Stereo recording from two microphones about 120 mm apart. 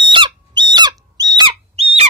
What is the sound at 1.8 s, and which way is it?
Owl, 55° right (ahead or behind).